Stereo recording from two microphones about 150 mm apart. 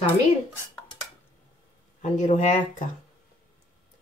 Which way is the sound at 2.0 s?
55° left (ahead or behind).